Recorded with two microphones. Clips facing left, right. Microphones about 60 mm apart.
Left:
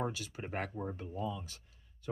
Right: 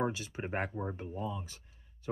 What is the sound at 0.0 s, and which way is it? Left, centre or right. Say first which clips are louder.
Speech: right 4 dB; right.